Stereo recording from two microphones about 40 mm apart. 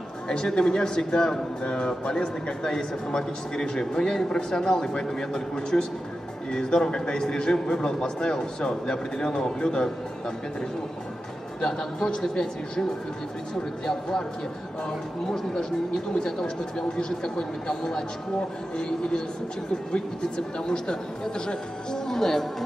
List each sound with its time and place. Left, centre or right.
0.3 s a man's voice: centre
11.6 s speech: centre
13.8 s a man's voice: centre